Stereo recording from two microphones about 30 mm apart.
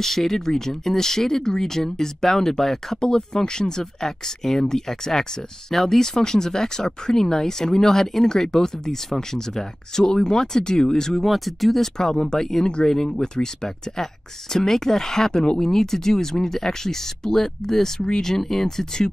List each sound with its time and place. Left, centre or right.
0.0 s speech: centre
11.2 s speech: centre